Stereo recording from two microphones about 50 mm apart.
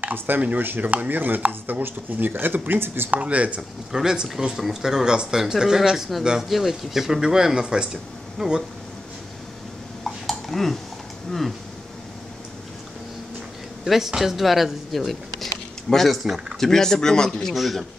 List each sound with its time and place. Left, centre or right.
0.0 s speech: right
0.6 s chopping: right
3.1 s speech: right
3.9 s speech: centre
10.0 s dishes: centre
13.8 s speech: centre
17.6 s speech: centre